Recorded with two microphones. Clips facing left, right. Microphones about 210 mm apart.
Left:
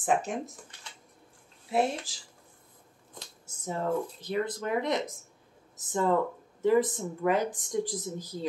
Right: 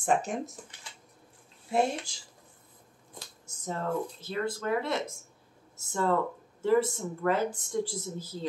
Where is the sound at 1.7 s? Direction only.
5° left (ahead or behind).